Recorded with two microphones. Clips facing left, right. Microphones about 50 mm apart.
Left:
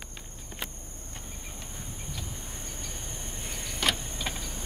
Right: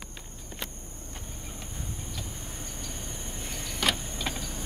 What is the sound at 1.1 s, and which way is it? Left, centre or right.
Train, centre.